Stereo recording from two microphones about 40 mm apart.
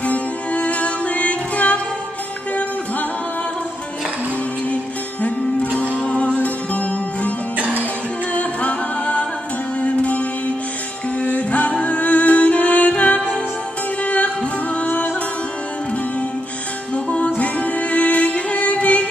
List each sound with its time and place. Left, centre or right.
0.0 s music: left
6.0 s music: left
6.3 s music: left
7.5 s music: right
8.3 s music: left
16.9 s music: left
17.4 s music: left